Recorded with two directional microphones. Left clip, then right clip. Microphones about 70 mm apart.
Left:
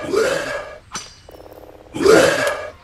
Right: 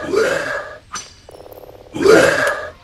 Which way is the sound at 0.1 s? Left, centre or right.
Centre.